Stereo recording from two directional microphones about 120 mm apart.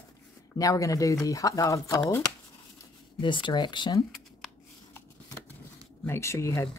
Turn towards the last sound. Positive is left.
turn(degrees=25)  # may be behind; listen again after turning